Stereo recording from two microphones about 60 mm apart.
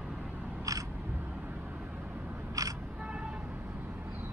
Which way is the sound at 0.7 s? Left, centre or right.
Right.